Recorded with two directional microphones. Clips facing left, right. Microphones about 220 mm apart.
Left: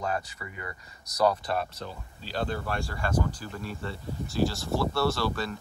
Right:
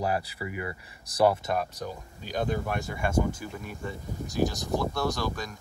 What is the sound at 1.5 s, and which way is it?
Speech, 15° right (ahead or behind).